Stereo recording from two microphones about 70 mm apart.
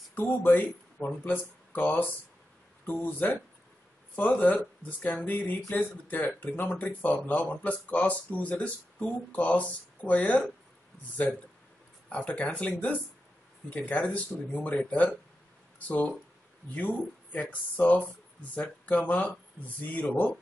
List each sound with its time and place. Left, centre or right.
0.1 s speech: left
4.4 s speech: left
12.1 s speech: centre